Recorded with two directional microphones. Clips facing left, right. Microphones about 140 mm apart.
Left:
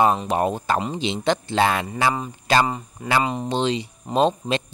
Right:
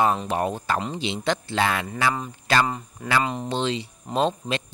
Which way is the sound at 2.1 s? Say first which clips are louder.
Left 3 dB; 15° left (ahead or behind).